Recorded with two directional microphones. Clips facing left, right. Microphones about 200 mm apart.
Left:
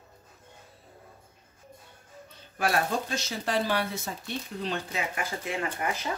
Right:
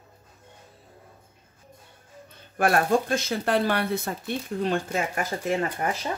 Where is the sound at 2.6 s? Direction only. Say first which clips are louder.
Right 6 dB; 50° right (ahead or behind).